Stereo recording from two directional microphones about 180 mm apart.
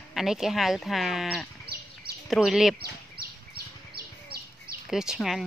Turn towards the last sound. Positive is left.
turn(degrees=0)  # may be behind; listen again after turning